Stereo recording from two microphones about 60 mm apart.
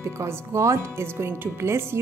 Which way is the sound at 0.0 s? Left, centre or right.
Right.